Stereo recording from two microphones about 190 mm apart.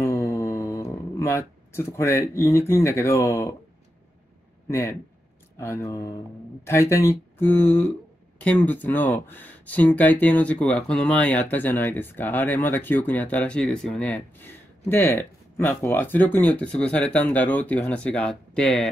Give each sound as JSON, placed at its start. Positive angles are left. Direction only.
{"t": 0.0, "sound": "speech", "side_deg": 15}
{"t": 4.6, "sound": "speech", "side_deg": 15}